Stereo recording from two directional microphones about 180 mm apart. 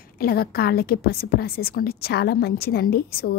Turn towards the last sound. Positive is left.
turn(degrees=55)  # may be behind; listen again after turning